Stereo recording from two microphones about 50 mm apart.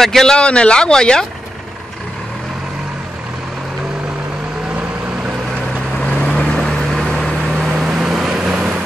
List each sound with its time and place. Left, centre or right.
0.0 s a man's voice: centre
0.4 s speech: centre
6.2 s vehicle: centre
7.6 s vehicle: centre